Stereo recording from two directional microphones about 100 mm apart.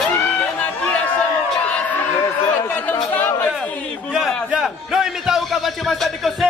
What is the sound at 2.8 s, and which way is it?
Chatter, 20° left (ahead or behind).